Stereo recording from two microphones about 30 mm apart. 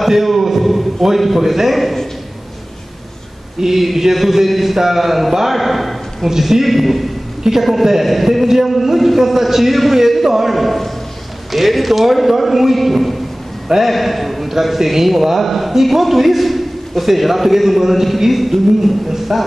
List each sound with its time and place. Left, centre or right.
0.0 s a sound: centre
1.7 s a man's voice: centre
3.6 s a man's voice: centre
7.5 s a man's voice: centre